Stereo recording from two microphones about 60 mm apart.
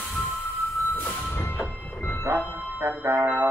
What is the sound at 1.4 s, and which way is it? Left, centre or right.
Music, left.